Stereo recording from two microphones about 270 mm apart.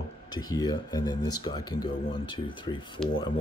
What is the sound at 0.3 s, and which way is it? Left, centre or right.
Speech, centre.